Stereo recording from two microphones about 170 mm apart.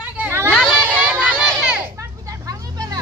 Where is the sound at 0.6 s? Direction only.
10° right (ahead or behind).